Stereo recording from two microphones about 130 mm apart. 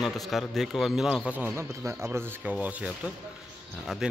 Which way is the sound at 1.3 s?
15° right (ahead or behind).